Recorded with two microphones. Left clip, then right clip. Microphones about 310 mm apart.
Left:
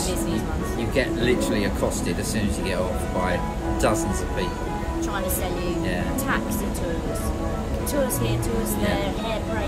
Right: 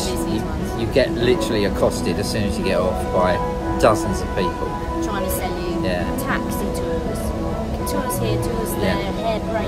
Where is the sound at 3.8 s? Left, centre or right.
Centre.